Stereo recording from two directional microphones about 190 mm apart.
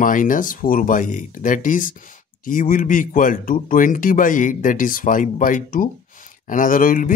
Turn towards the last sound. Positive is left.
turn(degrees=45)  # may be behind; listen again after turning